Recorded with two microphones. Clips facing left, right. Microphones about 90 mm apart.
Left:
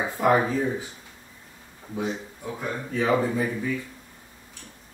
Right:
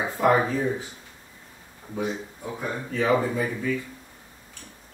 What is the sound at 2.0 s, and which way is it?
Speech, 5° right (ahead or behind).